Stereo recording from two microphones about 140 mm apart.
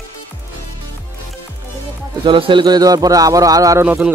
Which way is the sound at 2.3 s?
35° right (ahead or behind).